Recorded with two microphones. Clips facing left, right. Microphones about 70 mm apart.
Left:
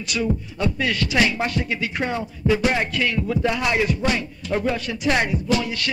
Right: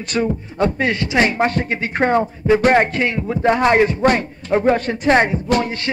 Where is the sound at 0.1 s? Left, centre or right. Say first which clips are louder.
Right 4 dB; right.